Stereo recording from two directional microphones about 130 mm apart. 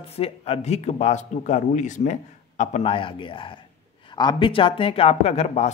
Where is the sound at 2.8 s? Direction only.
40° left (ahead or behind).